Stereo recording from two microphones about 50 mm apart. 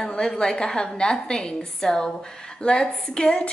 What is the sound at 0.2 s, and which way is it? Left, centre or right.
A woman's voice, centre.